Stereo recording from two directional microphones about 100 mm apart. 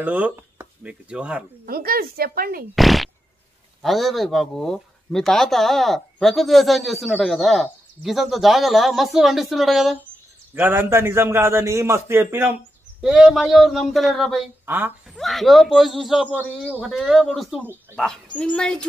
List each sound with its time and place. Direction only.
0.0 s speech: 15° right (ahead or behind)
2.7 s speech: centre (ahead or behind)
10.5 s a man's voice: 20° right (ahead or behind)
13.0 s speech: 5° right (ahead or behind)